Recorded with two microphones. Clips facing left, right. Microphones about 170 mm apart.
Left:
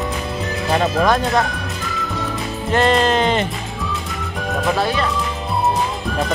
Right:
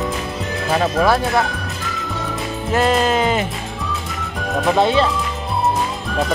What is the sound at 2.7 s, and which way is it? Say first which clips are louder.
Speech: left 1 dB; 5° right (ahead or behind).